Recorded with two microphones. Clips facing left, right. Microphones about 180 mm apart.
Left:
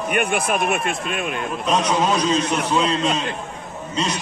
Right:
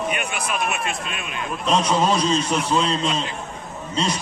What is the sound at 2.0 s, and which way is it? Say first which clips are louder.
Speech: left 1 dB; 10° left (ahead or behind).